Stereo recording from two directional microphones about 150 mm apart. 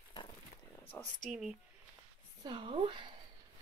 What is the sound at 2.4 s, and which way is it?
Speech, 35° right (ahead or behind).